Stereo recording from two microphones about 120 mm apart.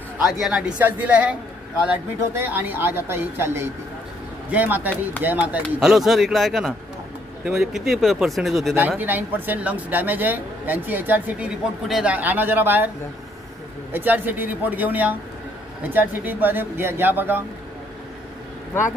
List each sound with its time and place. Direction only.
0.2 s speech: centre (ahead or behind)
2.3 s speech: 15° right (ahead or behind)
5.8 s speech: centre (ahead or behind)
8.7 s speech: 15° right (ahead or behind)
13.9 s speech: 15° right (ahead or behind)